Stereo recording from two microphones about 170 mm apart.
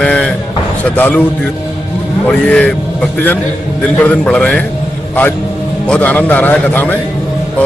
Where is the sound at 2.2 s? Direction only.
5° left (ahead or behind).